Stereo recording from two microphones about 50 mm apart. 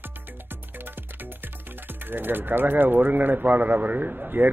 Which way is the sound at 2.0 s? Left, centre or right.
Right.